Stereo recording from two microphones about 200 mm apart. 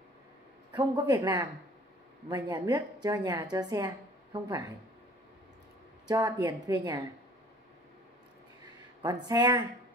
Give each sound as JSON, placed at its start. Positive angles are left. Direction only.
{"t": 0.7, "sound": "a woman's voice", "side_deg": -20}
{"t": 6.0, "sound": "speech", "side_deg": -20}
{"t": 9.0, "sound": "speech", "side_deg": -20}